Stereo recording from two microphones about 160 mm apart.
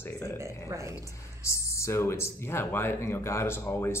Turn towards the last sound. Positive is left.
turn(degrees=15)  # may be behind; listen again after turning